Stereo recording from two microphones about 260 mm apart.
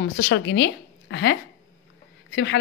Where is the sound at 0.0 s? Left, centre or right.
Left.